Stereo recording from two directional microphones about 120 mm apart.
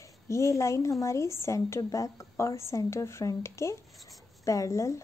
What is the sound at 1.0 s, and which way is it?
A woman's voice, 25° left (ahead or behind).